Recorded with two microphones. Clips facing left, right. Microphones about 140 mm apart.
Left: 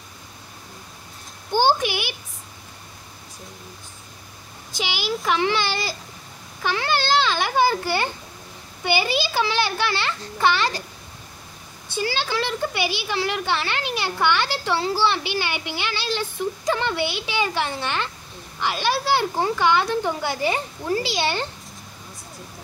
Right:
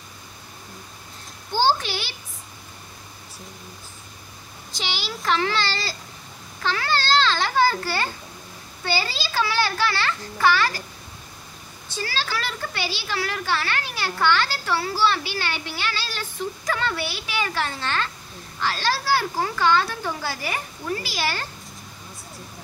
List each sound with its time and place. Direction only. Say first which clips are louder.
1.5 s a sound: left 2 dB; 15° left (ahead or behind)
4.7 s a child's voice: left 5 dB; 10° left (ahead or behind)
6.6 s babbling: left 1 dB; 15° left (ahead or behind)
8.8 s speech: left 5 dB; 15° left (ahead or behind)
11.9 s speech: left 4 dB; 20° left (ahead or behind)